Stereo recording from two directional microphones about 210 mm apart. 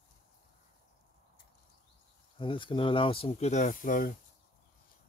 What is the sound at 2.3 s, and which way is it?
Speech, 25° left (ahead or behind).